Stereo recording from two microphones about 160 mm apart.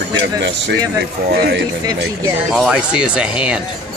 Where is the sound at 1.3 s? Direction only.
75° right (ahead or behind).